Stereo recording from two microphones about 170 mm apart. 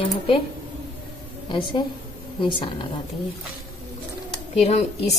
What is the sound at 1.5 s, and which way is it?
A woman's voice, 30° left (ahead or behind).